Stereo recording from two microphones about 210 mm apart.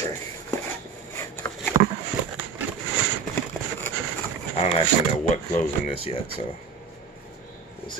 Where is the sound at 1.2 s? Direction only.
10° left (ahead or behind).